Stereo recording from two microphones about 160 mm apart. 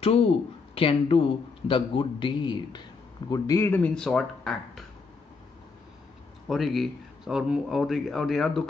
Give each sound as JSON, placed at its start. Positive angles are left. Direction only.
{"t": 0.0, "sound": "a man's voice", "side_deg": 40}
{"t": 6.4, "sound": "speech", "side_deg": 0}